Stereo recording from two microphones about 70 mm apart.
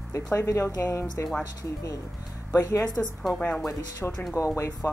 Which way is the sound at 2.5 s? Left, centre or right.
Left.